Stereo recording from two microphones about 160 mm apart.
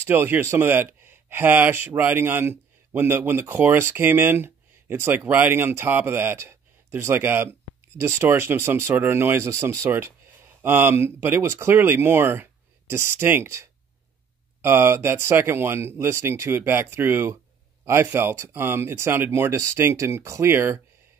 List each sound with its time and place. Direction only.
0.0 s speech: 15° right (ahead or behind)